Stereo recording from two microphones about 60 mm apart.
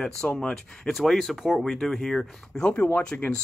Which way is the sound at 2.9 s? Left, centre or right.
Left.